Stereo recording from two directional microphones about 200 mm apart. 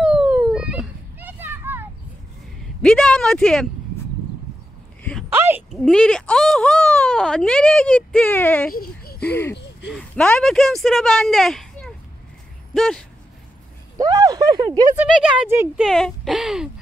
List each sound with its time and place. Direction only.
0.0 s children playing: 5° right (ahead or behind)
2.8 s speech: 5° left (ahead or behind)
5.3 s a sound: 10° right (ahead or behind)
5.8 s speech: 5° left (ahead or behind)
8.7 s a sound: 50° left (ahead or behind)
9.3 s a sound: 10° left (ahead or behind)
9.8 s speech: 5° left (ahead or behind)
13.9 s speech: 20° right (ahead or behind)
15.0 s speech: 5° right (ahead or behind)